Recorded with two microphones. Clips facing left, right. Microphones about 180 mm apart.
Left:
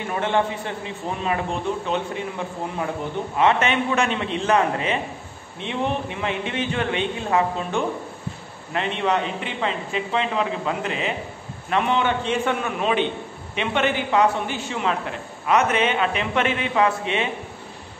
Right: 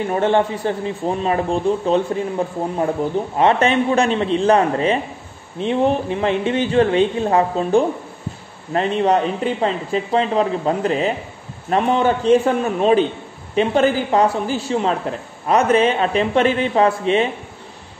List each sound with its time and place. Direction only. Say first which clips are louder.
0.1 s a man's voice: right 4 dB; 35° right (ahead or behind)